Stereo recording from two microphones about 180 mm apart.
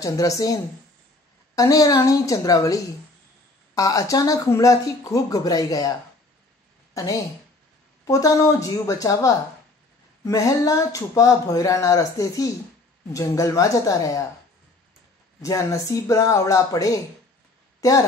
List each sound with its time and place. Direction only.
0.0 s speech: 20° left (ahead or behind)
6.9 s a sound: 15° left (ahead or behind)
8.0 s a woman's voice: 20° left (ahead or behind)
15.4 s speech: 20° left (ahead or behind)